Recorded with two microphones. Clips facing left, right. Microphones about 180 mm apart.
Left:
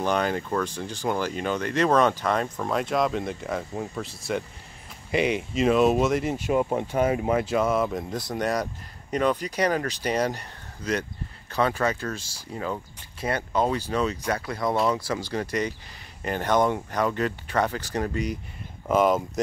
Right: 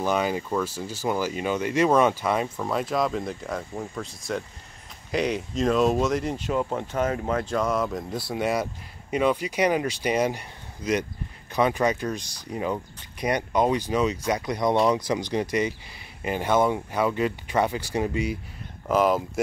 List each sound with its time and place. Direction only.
0.0 s speech: 5° right (ahead or behind)